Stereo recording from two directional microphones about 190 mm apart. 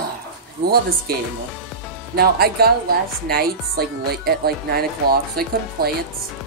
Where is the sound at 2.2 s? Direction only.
55° right (ahead or behind).